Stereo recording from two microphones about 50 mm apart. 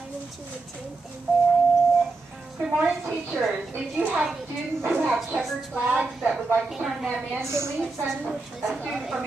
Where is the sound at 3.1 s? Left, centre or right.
Centre.